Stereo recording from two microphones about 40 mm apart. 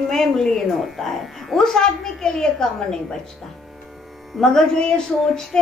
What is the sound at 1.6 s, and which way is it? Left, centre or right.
A woman's voice, centre.